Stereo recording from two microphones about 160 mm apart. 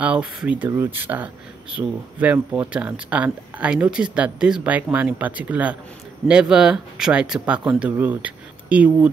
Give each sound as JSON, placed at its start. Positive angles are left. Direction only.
{"t": 0.0, "sound": "speech", "side_deg": -5}